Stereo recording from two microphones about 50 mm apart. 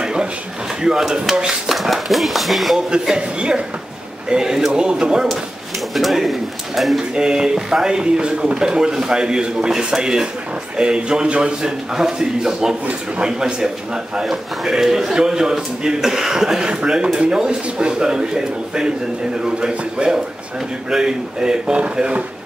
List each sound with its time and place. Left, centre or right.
0.0 s a sound: centre
0.8 s a man's voice: centre
2.9 s a man's voice: centre
5.9 s speech: centre
7.0 s a man's voice: centre